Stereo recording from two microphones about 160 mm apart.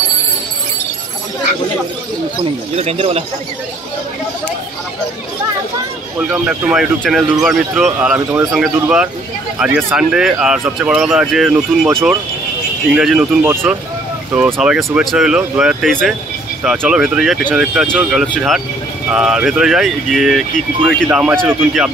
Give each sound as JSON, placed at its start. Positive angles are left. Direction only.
{"t": 2.7, "sound": "speech", "side_deg": -40}
{"t": 6.1, "sound": "speech", "side_deg": -10}